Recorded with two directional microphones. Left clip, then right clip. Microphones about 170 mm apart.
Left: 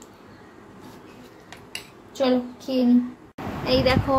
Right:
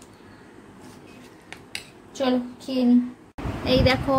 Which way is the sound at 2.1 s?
Centre (ahead or behind).